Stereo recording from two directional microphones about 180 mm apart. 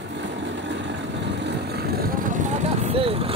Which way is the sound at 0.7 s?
80° right.